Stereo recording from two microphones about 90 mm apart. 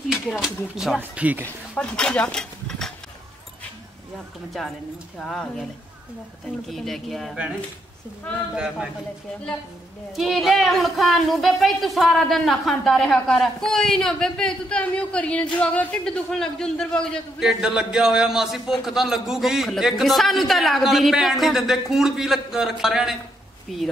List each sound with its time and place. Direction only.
0.4 s speech: 5° right (ahead or behind)
0.9 s speech: 15° right (ahead or behind)
1.4 s speech: 10° left (ahead or behind)
2.3 s cutlery: 5° left (ahead or behind)
5.2 s speech: 5° left (ahead or behind)
6.7 s speech: centre (ahead or behind)
8.5 s speech: 5° right (ahead or behind)
10.1 s speech: centre (ahead or behind)
17.4 s speech: 5° right (ahead or behind)